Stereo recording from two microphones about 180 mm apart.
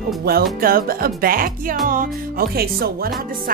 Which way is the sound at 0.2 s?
60° right (ahead or behind).